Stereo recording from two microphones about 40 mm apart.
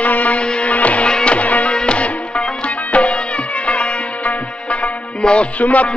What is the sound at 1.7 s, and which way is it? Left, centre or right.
Music, left.